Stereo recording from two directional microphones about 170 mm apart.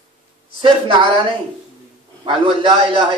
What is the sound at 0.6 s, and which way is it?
Speech, 30° right (ahead or behind).